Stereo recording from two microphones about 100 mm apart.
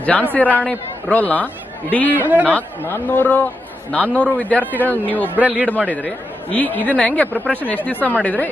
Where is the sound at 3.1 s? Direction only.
20° left (ahead or behind).